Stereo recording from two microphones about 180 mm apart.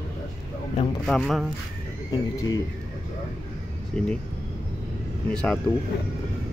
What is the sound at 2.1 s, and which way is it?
Speech, 20° left (ahead or behind).